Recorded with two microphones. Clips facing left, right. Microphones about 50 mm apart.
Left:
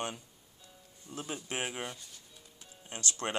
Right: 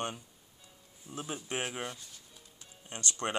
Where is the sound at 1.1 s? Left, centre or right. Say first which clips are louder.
Right 1 dB; centre.